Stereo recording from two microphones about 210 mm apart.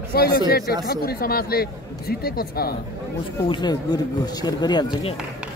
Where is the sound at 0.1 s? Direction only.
45° left (ahead or behind).